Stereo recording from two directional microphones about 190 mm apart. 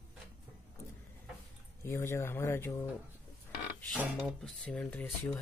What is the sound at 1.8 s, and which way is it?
Speech, 15° left (ahead or behind).